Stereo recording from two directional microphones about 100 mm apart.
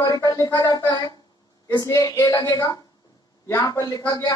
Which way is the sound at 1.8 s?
35° left (ahead or behind).